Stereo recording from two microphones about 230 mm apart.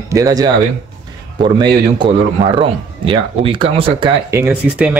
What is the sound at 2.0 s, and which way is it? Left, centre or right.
Speech, right.